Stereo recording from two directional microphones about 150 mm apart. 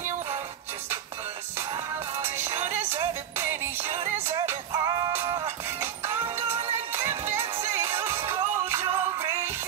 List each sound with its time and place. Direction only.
2.2 s music: 15° right (ahead or behind)